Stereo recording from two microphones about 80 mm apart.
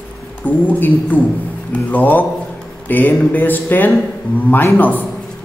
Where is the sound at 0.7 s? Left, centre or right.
Left.